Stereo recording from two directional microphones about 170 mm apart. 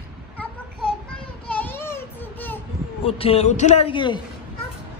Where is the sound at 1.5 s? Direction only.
10° left (ahead or behind).